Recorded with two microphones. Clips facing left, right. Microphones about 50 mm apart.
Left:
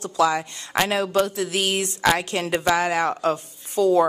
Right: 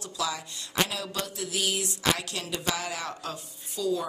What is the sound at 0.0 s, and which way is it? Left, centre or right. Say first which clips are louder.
Speech: left 12 dB; left.